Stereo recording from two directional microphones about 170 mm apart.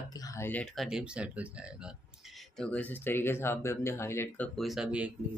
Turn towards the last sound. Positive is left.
turn(degrees=-5)  # may be behind; listen again after turning